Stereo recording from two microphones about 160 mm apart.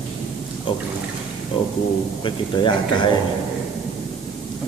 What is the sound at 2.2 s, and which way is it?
Speech, 30° left (ahead or behind).